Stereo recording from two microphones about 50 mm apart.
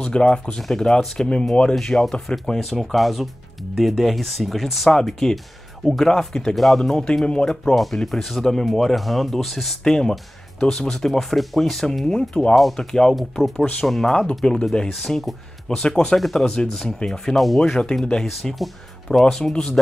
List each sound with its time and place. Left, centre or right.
0.0 s speech: centre
0.6 s speech: centre
1.8 s speech: centre
7.7 s speech: centre
13.1 s speech: centre